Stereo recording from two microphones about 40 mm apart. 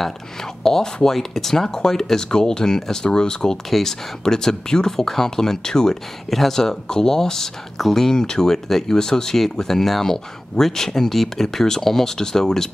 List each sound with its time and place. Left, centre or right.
0.7 s speech: centre